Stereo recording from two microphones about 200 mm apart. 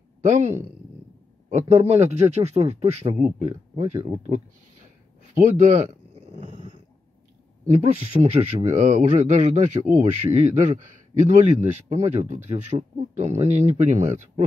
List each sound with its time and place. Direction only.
0.2 s speech: 35° right (ahead or behind)
1.5 s a man's voice: 35° right (ahead or behind)
5.3 s a sound: 35° right (ahead or behind)
7.6 s a man's voice: 30° right (ahead or behind)